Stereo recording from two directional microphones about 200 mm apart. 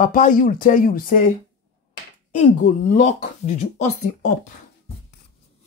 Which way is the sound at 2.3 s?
40° left (ahead or behind).